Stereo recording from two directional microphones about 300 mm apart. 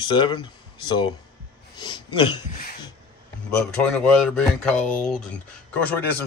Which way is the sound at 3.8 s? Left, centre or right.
Centre.